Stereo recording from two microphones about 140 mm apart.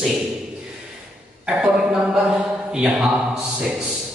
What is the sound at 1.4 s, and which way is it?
A man's voice, 5° right (ahead or behind).